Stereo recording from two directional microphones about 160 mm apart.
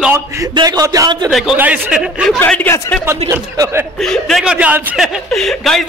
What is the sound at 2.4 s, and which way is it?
Speech, 10° left (ahead or behind).